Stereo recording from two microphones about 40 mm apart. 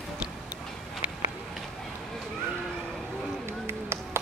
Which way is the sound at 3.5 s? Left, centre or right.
Right.